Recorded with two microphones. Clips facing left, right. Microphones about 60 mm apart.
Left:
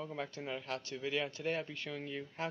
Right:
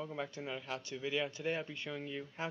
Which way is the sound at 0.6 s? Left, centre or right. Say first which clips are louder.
Left 1 dB; centre.